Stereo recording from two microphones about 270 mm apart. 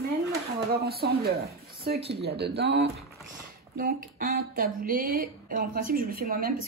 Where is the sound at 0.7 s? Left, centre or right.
Right.